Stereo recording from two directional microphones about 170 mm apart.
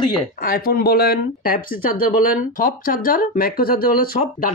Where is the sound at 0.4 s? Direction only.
60° left (ahead or behind).